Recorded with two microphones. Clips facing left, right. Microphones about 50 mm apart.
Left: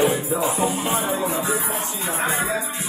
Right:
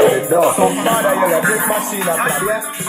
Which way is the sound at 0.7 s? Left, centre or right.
Right.